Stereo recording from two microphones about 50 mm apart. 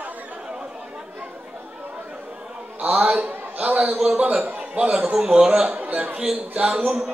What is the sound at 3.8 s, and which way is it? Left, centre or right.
Speech, centre.